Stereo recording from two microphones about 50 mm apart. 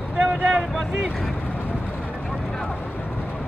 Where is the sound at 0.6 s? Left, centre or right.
Centre.